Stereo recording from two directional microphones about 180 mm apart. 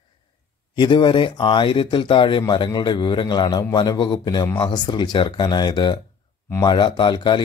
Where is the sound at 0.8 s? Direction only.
25° left (ahead or behind).